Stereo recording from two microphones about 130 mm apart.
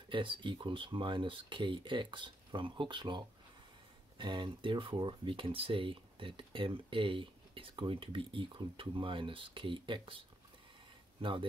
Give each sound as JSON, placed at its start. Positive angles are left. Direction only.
{"t": 0.1, "sound": "speech", "side_deg": -40}